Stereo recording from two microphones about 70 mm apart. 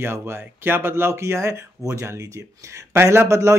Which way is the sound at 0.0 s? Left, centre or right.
Right.